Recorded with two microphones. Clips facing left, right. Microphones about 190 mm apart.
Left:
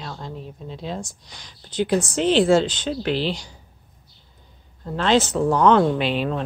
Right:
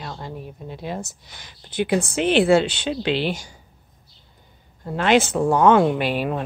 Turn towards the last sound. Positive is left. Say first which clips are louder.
# even
turn(degrees=-10)  # may be behind; listen again after turning